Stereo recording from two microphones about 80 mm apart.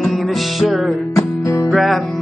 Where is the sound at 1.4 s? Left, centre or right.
Left.